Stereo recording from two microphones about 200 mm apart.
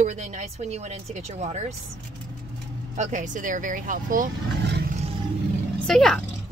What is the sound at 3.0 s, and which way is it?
Speech, 40° right (ahead or behind).